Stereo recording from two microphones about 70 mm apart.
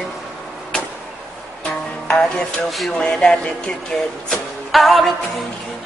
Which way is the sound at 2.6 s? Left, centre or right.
Centre.